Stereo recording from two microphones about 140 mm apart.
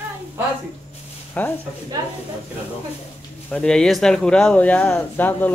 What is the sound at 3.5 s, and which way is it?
Speech, 5° left (ahead or behind).